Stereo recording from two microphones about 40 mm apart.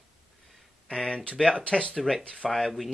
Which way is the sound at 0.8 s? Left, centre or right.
Centre.